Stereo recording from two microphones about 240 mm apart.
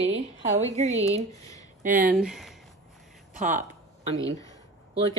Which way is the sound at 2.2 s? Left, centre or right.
Centre.